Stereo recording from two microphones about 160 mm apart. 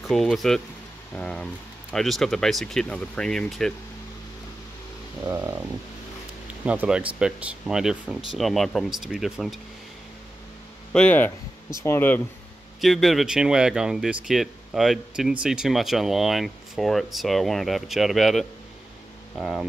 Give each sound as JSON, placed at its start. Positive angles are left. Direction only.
{"t": 0.1, "sound": "speech", "side_deg": 0}
{"t": 5.2, "sound": "a sound", "side_deg": -15}
{"t": 6.6, "sound": "speech", "side_deg": -10}
{"t": 10.9, "sound": "speech", "side_deg": 5}
{"t": 12.8, "sound": "speech", "side_deg": 0}